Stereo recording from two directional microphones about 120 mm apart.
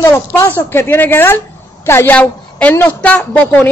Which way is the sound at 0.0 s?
20° left (ahead or behind).